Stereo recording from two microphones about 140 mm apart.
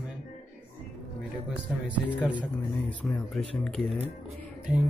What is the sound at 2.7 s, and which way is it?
Speech, 10° left (ahead or behind).